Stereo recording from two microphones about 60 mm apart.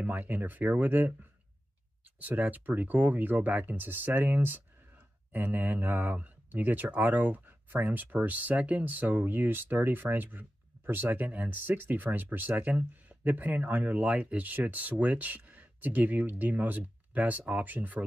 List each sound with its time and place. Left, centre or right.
0.0 s speech: right
2.1 s speech: right